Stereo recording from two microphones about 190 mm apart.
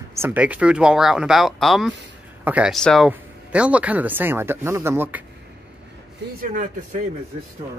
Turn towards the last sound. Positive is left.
turn(degrees=-45)  # may be behind; listen again after turning